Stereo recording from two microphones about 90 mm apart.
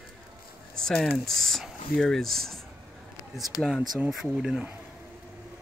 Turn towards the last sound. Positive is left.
turn(degrees=-5)  # may be behind; listen again after turning